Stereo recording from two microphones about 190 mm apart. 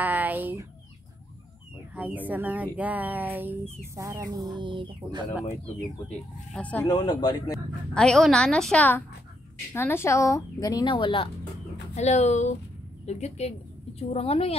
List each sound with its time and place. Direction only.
0.0 s speech: 10° right (ahead or behind)
2.0 s speech: 10° right (ahead or behind); by 5.2 s 25° right (ahead or behind)
6.5 s a woman's voice: 5° left (ahead or behind)
6.9 s speech: 20° left (ahead or behind)
7.9 s a woman's voice: 5° left (ahead or behind); by 11.2 s 25° left (ahead or behind)
11.9 s a woman's voice: 35° left (ahead or behind)